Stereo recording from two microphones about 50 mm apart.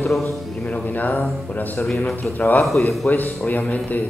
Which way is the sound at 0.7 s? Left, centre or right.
Left.